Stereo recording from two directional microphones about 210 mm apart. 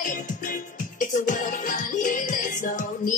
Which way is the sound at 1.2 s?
40° left (ahead or behind).